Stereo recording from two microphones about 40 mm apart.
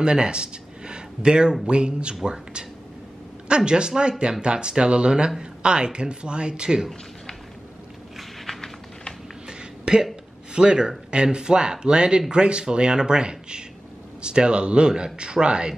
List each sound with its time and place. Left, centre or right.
0.0 s speech: right
3.4 s speech: right
9.5 s a sound: centre
10.5 s a man's voice: right